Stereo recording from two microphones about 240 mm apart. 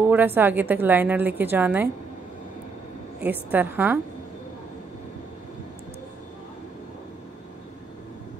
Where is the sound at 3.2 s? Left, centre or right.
Centre.